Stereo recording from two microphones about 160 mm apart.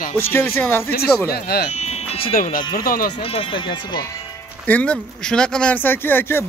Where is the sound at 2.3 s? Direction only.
60° left (ahead or behind).